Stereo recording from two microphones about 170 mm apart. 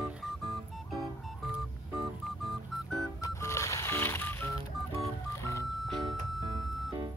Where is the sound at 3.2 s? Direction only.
15° left (ahead or behind).